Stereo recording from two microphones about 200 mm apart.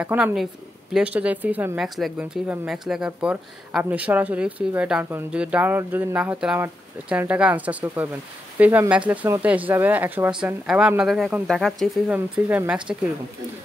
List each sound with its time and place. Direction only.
0.0 s speech: 5° right (ahead or behind)